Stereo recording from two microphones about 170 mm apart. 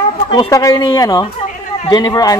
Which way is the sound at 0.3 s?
25° left (ahead or behind).